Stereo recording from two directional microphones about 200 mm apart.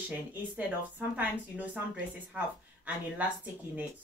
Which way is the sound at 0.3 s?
10° right (ahead or behind).